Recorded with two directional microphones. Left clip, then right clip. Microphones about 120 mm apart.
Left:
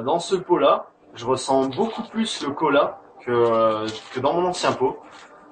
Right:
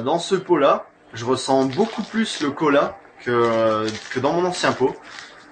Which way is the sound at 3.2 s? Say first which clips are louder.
Even; 10° right (ahead or behind).